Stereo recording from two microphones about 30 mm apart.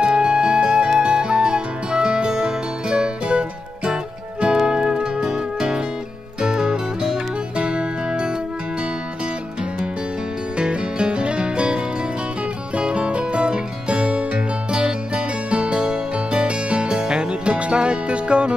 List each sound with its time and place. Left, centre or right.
0.0 s music: right
5.2 s music: centre
10.6 s music: right